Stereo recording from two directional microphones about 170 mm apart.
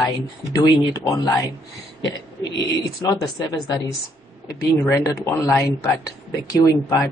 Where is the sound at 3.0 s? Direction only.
20° left (ahead or behind).